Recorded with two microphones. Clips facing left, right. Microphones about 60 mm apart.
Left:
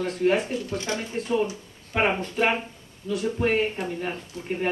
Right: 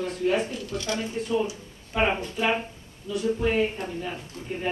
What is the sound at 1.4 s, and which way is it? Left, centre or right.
Speech, left.